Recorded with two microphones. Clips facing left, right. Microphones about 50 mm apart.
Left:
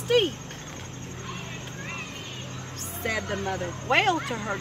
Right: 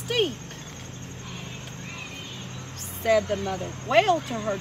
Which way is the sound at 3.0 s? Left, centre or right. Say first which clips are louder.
Right 6 dB; left.